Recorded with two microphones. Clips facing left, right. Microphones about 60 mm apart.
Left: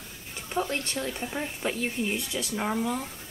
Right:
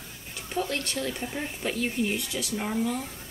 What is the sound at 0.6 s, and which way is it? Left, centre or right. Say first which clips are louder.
Speech: even; left.